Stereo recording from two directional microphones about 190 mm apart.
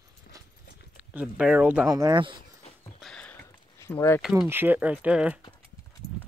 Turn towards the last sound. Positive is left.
turn(degrees=-5)  # may be behind; listen again after turning